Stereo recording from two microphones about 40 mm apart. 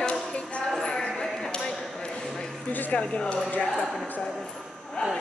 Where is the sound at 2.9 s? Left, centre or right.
Left.